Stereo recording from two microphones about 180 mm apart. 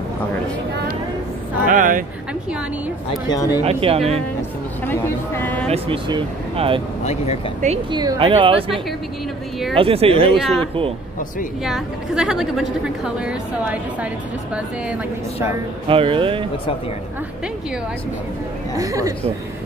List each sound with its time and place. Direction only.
1.7 s a sound: 45° right (ahead or behind)
3.3 s speech: 20° left (ahead or behind)
3.6 s speech: 35° right (ahead or behind)
4.8 s speech: 15° left (ahead or behind)
5.7 s speech: 30° right (ahead or behind)
7.9 s speech: 25° right (ahead or behind)
10.3 s a woman's voice: centre (ahead or behind)
11.6 s a woman's voice: centre (ahead or behind)
15.9 s speech: 30° right (ahead or behind)
18.8 s speech: 20° right (ahead or behind)